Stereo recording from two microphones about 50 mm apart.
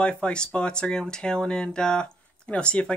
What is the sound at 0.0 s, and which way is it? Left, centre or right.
Speech, left.